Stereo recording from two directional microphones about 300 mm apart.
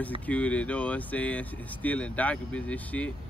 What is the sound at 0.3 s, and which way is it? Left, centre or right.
Speech, centre.